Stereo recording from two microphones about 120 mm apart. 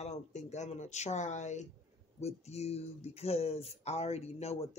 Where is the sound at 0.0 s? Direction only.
75° left (ahead or behind).